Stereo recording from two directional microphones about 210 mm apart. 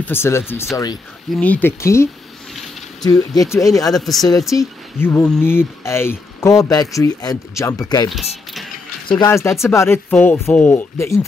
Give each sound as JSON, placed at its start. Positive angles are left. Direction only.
{"t": 0.0, "sound": "speech", "side_deg": 10}
{"t": 3.9, "sound": "speech", "side_deg": 0}